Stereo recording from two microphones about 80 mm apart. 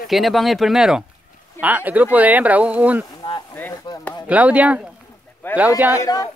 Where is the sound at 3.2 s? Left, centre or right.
Left.